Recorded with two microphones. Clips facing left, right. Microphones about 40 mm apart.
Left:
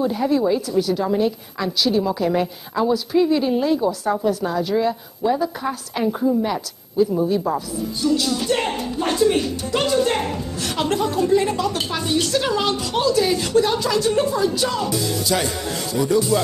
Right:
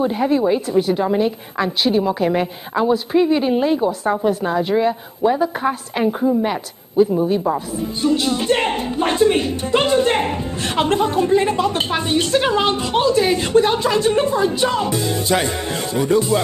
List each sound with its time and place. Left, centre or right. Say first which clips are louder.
0.0 s a woman's voice: right 2 dB; right